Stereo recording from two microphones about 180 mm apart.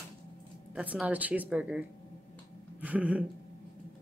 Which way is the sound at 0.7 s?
5° right (ahead or behind).